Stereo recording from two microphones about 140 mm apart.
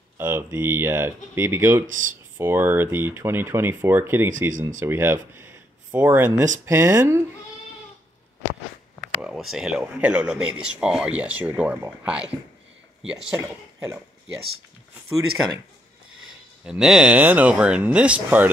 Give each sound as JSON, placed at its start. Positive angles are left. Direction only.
{"t": 0.2, "sound": "speech", "side_deg": -15}
{"t": 1.9, "sound": "speech", "side_deg": -70}
{"t": 2.3, "sound": "speech", "side_deg": -15}
{"t": 4.5, "sound": "speech", "side_deg": -70}
{"t": 4.7, "sound": "speech", "side_deg": -15}
{"t": 5.4, "sound": "a sound", "side_deg": -15}
{"t": 6.6, "sound": "speech", "side_deg": -15}
{"t": 9.0, "sound": "speech", "side_deg": -5}
{"t": 16.6, "sound": "speech", "side_deg": -5}